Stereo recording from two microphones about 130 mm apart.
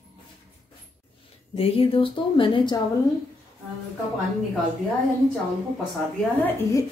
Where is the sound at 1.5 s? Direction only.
45° left (ahead or behind).